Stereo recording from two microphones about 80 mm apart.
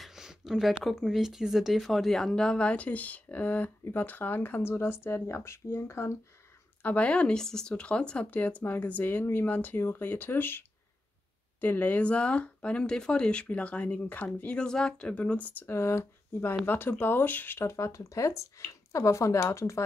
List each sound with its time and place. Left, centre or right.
0.0 s speech: centre; by 6.1 s left
6.8 s speech: centre
11.6 s speech: left
15.7 s speech: left